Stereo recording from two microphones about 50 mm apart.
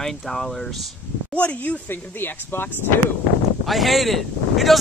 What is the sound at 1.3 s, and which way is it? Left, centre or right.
Speech, left.